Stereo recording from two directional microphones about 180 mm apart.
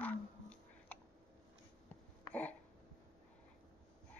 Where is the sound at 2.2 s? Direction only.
5° left (ahead or behind).